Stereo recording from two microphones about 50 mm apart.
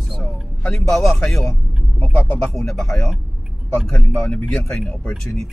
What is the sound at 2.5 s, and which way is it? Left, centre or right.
Speech, centre.